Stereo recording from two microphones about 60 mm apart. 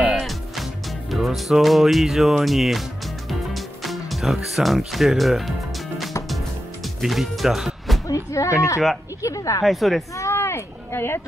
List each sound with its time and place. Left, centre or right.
0.1 s music: centre
1.1 s speech: centre
3.3 s music: centre
7.0 s speech: centre
8.1 s speech: left
9.6 s speech: centre
10.1 s a sound: left